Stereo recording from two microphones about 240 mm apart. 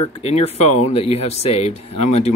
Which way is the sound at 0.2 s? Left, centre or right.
Left.